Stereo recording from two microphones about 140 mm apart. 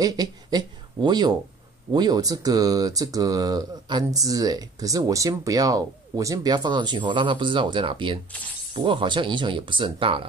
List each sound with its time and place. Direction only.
0.0 s speech: 25° right (ahead or behind)